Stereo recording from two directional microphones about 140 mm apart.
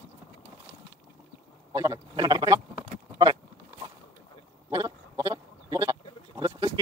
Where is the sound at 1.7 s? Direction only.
25° right (ahead or behind).